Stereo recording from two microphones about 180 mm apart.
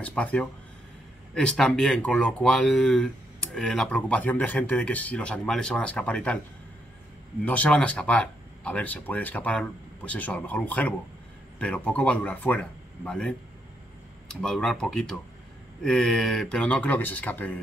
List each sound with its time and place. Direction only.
0.0 s speech: 5° left (ahead or behind)
7.4 s speech: 5° left (ahead or behind)
14.4 s speech: centre (ahead or behind)